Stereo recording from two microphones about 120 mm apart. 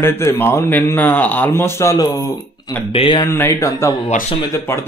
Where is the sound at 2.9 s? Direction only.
50° left (ahead or behind).